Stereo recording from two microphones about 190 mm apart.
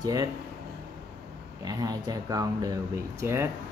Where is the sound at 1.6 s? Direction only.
20° right (ahead or behind).